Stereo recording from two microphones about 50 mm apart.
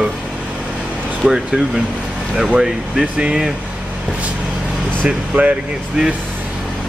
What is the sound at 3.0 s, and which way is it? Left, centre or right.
Speech, centre.